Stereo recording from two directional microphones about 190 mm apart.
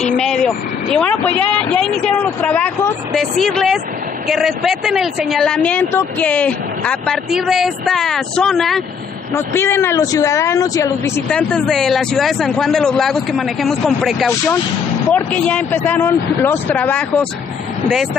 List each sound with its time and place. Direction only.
0.2 s speech: 5° left (ahead or behind)
9.3 s speech: 15° left (ahead or behind)
11.2 s speech: 5° left (ahead or behind)